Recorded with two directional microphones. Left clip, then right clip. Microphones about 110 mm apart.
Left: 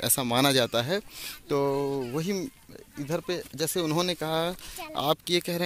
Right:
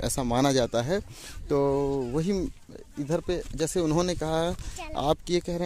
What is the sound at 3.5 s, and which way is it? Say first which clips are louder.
Speech: right 2 dB; 90° right.